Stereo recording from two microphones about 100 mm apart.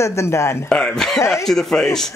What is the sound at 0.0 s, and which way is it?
Speech, 30° left (ahead or behind).